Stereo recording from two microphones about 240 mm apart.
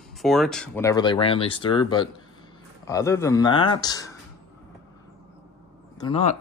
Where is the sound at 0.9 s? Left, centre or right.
Centre.